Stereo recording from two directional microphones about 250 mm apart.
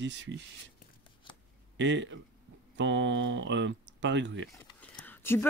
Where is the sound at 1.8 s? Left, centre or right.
Right.